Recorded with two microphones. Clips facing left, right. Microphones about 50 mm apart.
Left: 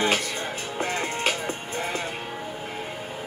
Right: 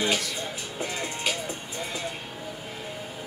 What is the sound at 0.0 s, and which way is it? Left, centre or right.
Music, left.